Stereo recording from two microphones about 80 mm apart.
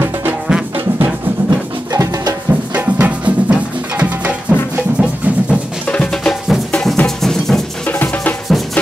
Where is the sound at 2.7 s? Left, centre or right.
Centre.